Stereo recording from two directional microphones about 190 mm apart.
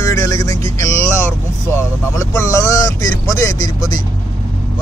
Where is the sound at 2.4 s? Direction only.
15° left (ahead or behind).